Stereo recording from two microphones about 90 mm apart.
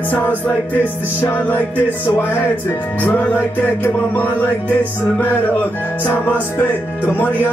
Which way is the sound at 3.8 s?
20° left (ahead or behind).